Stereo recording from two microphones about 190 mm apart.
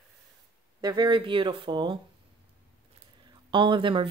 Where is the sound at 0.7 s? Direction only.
20° right (ahead or behind).